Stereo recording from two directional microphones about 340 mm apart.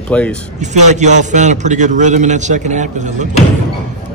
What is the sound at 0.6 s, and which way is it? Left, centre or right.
A man's voice, right.